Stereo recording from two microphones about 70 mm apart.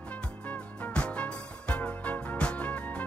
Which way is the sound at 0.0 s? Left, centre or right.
Centre.